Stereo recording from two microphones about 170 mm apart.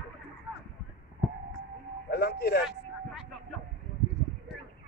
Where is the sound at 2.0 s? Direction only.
70° left (ahead or behind).